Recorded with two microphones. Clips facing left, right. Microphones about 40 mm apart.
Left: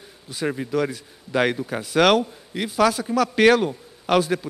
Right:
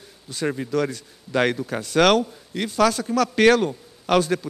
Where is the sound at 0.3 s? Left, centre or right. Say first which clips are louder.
Even; centre.